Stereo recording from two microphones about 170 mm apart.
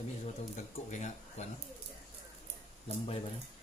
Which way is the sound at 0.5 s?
45° left (ahead or behind).